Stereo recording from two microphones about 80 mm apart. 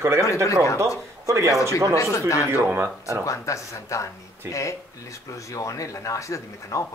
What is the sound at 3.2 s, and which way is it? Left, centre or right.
Speech, left.